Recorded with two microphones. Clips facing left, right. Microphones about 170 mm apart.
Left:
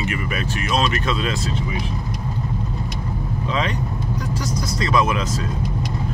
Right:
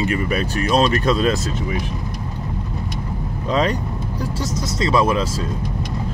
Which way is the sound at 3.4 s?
40° right (ahead or behind).